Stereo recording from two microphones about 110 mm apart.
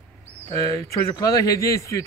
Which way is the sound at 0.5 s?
30° left (ahead or behind).